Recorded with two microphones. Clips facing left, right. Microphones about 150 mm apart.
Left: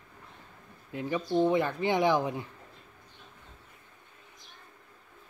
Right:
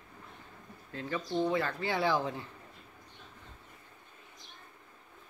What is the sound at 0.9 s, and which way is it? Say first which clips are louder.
Speech: left 5 dB; 15° left (ahead or behind).